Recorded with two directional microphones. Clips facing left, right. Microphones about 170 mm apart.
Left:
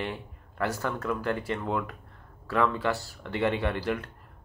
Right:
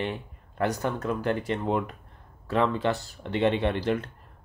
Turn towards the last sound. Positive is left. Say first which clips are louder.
# right 3 dB
turn(degrees=-25)  # may be behind; listen again after turning